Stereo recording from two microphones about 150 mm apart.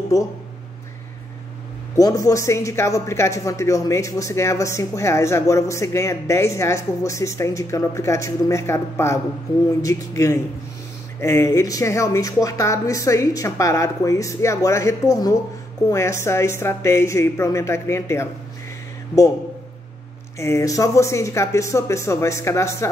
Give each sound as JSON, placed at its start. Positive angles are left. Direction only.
{"t": 2.0, "sound": "speech", "side_deg": 20}
{"t": 20.3, "sound": "speech", "side_deg": 20}